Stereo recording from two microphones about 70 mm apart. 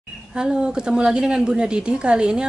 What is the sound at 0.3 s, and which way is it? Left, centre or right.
A woman's voice, centre.